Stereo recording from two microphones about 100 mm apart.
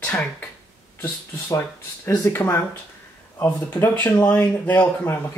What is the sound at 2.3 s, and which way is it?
Speech, 25° left (ahead or behind).